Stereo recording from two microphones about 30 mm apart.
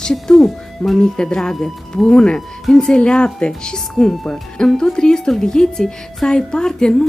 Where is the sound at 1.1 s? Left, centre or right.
Left.